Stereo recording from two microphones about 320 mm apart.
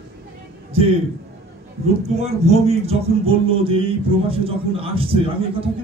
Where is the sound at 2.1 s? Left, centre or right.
Centre.